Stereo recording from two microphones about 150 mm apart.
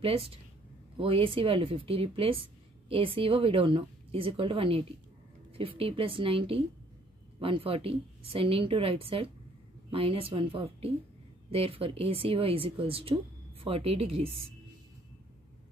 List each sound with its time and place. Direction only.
0.0 s speech: 40° right (ahead or behind)